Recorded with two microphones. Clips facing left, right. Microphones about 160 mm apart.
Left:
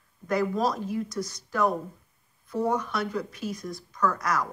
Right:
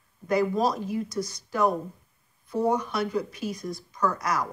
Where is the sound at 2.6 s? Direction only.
10° right (ahead or behind).